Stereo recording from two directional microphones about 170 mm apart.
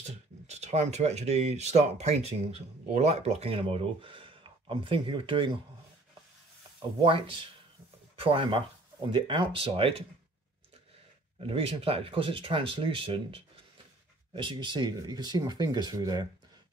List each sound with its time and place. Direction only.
0.0 s speech: 40° right (ahead or behind)
7.1 s speech: 30° right (ahead or behind)
11.3 s speech: 35° right (ahead or behind)